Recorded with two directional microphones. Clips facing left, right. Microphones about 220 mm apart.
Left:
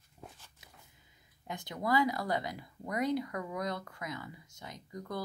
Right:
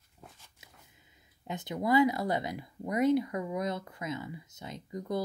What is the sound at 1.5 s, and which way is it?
Speech, 20° right (ahead or behind).